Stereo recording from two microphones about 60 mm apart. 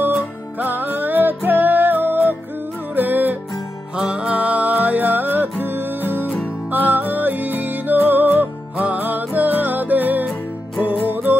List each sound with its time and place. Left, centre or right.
0.1 s music: right
3.9 s music: centre